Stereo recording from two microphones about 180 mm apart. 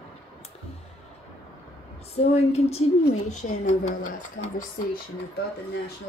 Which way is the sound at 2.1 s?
35° left (ahead or behind).